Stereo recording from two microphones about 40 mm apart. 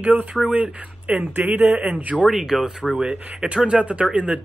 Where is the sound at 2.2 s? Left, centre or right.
Centre.